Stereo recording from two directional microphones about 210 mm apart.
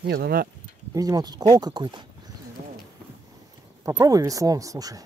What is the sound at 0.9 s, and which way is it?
Speech, 15° right (ahead or behind).